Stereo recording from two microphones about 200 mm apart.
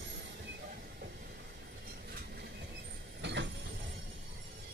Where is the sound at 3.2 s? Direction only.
60° right (ahead or behind).